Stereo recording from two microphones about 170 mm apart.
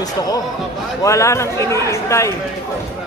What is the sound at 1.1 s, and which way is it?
A man's voice, 15° left (ahead or behind).